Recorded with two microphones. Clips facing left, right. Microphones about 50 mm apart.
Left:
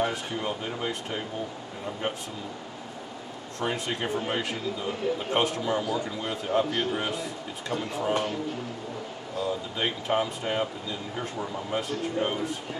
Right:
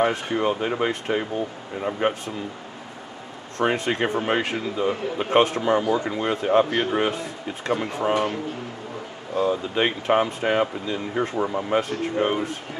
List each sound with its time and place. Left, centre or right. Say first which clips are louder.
0.0 s speech: right 7 dB; right
3.5 s speech: right 8 dB; right